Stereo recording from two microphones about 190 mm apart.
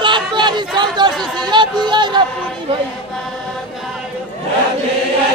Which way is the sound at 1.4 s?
20° right (ahead or behind).